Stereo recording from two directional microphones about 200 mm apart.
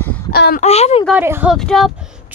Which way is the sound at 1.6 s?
Centre (ahead or behind).